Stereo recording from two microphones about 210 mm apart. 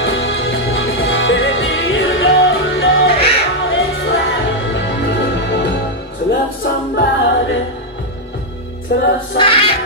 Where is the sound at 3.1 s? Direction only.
30° left (ahead or behind).